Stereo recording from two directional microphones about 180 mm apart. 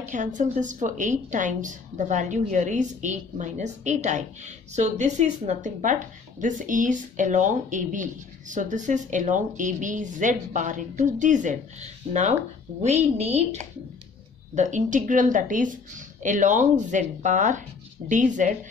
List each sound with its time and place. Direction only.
0.1 s a woman's voice: 45° right (ahead or behind)